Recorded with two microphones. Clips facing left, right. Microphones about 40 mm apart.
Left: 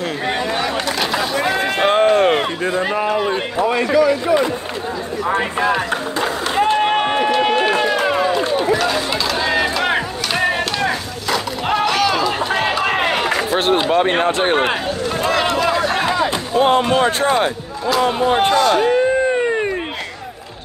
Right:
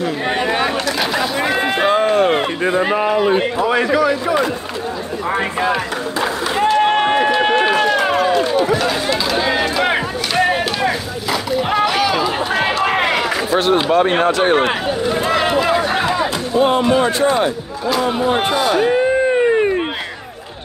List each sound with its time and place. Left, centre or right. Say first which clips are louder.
1.1 s run: left 1 dB; centre
1.9 s a sound: left 2 dB; left
2.6 s speech: right 3 dB; centre
3.5 s a man's voice: right 1 dB; right
5.3 s speech: even; centre
6.8 s run: right 2 dB; centre
8.7 s chop: right 1 dB; centre
12.8 s crowd: right 1 dB; centre
14.2 s speech: right 2 dB; centre
15.0 s speech: right 1 dB; centre
17.8 s speech: left 1 dB; centre
18.5 s a sound: left 1 dB; centre